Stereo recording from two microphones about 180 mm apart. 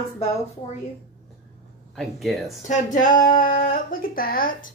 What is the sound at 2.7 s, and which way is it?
Speech, 45° left (ahead or behind).